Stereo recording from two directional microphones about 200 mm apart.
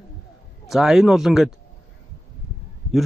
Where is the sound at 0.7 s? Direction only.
Centre (ahead or behind).